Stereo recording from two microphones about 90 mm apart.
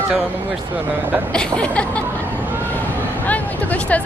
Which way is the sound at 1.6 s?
15° left (ahead or behind).